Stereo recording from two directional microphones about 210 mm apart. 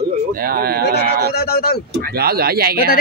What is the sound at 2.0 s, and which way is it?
Speech, 50° right (ahead or behind).